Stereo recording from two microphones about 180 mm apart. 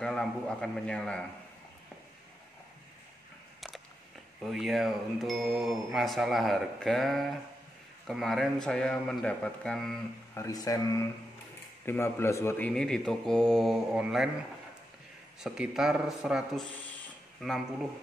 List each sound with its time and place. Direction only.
0.0 s speech: 5° left (ahead or behind)
4.4 s speech: centre (ahead or behind)
10.3 s speech: 20° left (ahead or behind); by 14.3 s 5° right (ahead or behind)
15.4 s speech: 5° right (ahead or behind)